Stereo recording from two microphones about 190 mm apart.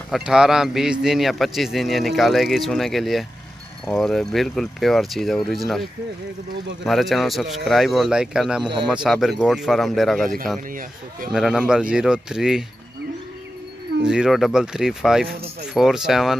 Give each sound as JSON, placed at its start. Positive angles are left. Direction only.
{"t": 0.1, "sound": "speech", "side_deg": -5}
{"t": 6.8, "sound": "speech", "side_deg": 0}
{"t": 10.7, "sound": "speech", "side_deg": -45}
{"t": 11.3, "sound": "speech", "side_deg": -5}
{"t": 14.0, "sound": "speech", "side_deg": -5}